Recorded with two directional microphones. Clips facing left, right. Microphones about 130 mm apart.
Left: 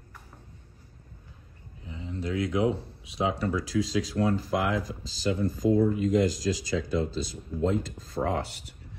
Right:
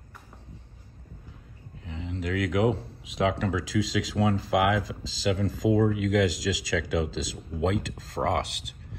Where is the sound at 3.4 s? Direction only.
90° right; by 8.8 s 70° right (ahead or behind).